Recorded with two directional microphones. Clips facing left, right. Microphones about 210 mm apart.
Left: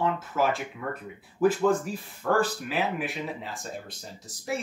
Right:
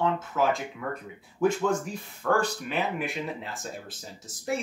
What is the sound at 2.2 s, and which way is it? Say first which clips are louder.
Speech: left 1 dB; 5° left (ahead or behind).